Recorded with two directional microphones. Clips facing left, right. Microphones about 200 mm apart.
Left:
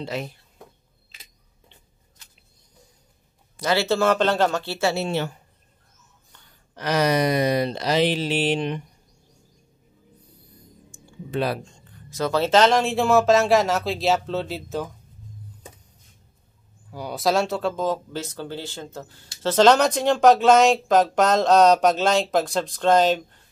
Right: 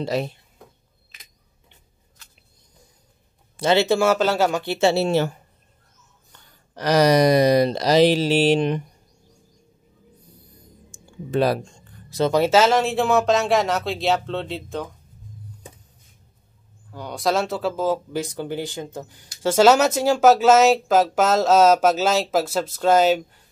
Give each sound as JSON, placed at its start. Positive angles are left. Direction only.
{"t": 0.0, "sound": "speech", "side_deg": -35}
{"t": 3.5, "sound": "speech", "side_deg": -25}
{"t": 4.7, "sound": "speech", "side_deg": -25}
{"t": 5.0, "sound": "speech", "side_deg": -40}
{"t": 6.7, "sound": "speech", "side_deg": -40}
{"t": 11.2, "sound": "speech", "side_deg": -40}
{"t": 12.3, "sound": "speech", "side_deg": -10}
{"t": 16.9, "sound": "speech", "side_deg": 5}